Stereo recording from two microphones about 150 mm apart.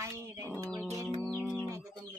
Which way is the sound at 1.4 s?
15° left (ahead or behind).